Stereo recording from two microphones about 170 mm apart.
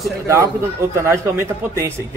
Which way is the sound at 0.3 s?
15° right (ahead or behind).